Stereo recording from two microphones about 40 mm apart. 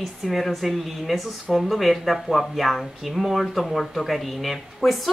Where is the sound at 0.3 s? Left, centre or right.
Centre.